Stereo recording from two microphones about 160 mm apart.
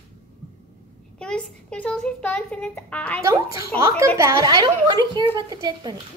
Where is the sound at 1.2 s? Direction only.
5° left (ahead or behind).